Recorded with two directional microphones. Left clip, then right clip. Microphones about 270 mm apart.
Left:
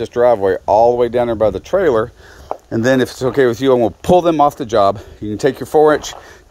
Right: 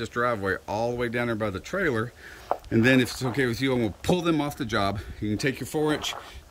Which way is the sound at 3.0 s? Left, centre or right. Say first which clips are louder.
Left 11 dB; centre.